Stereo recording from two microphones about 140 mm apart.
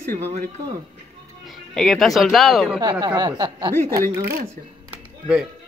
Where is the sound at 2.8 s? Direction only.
30° right (ahead or behind).